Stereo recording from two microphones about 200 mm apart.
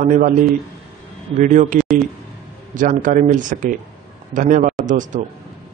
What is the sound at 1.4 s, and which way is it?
A man's voice, 40° right (ahead or behind).